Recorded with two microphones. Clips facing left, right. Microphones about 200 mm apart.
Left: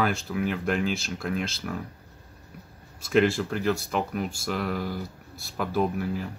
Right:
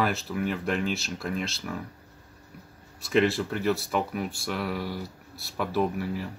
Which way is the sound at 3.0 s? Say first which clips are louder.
Left 1 dB; centre (ahead or behind).